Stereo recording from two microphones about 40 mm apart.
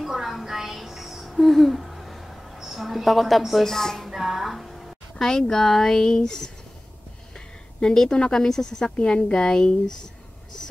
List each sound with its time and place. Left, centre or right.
0.0 s music: centre
1.2 s a sound: centre
4.1 s music: centre
5.2 s a woman's voice: centre